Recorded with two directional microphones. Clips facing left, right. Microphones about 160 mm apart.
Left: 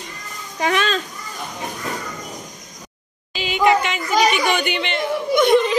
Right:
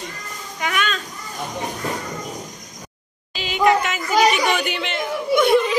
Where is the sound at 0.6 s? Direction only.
30° left (ahead or behind).